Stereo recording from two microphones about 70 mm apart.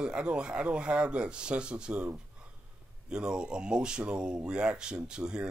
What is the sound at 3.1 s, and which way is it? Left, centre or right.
Speech, centre.